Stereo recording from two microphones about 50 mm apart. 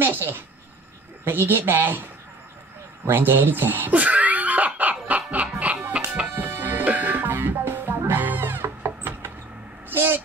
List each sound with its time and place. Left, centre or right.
0.0 s a woman's voice: right
3.1 s a woman's voice: right
3.9 s laughter: right
6.2 s music: right
6.8 s music: right
8.6 s a sound: right